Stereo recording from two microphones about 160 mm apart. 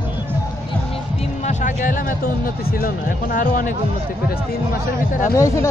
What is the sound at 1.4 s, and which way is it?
Music, 50° left (ahead or behind).